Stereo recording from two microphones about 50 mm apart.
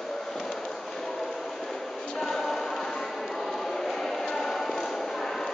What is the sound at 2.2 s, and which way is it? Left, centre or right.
Music, centre.